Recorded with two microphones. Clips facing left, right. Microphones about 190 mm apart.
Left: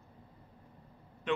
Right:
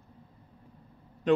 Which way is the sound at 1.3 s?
40° right (ahead or behind).